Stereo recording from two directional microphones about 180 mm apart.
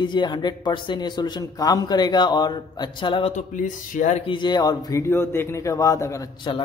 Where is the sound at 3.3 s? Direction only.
45° left (ahead or behind).